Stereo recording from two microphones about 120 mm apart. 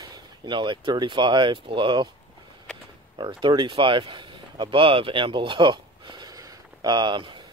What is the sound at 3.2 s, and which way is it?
Speech, 40° right (ahead or behind).